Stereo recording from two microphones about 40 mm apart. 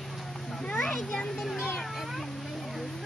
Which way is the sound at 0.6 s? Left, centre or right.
Left.